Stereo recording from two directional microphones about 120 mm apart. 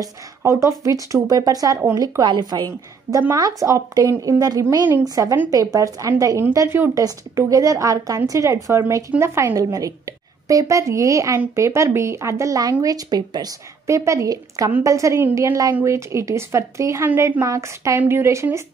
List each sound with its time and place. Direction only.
0.0 s a woman's voice: 25° right (ahead or behind)